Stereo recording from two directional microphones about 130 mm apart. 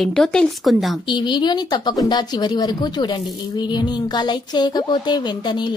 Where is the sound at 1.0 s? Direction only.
35° left (ahead or behind).